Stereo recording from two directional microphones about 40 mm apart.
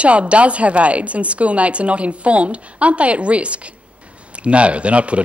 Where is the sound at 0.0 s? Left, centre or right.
Right.